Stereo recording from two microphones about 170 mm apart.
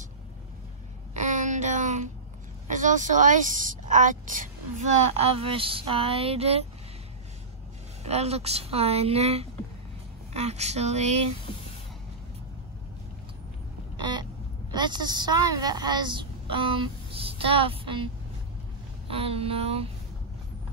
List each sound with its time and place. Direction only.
1.1 s a sound: 45° right (ahead or behind)
2.7 s a woman's voice: 50° right (ahead or behind)
8.0 s speech: 40° right (ahead or behind)
13.9 s a sound: 25° right (ahead or behind)
14.7 s a woman's voice: 25° right (ahead or behind)
19.0 s speech: 35° right (ahead or behind)